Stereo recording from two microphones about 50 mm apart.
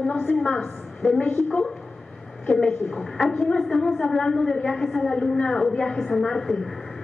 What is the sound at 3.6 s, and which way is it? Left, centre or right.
A woman's voice, centre.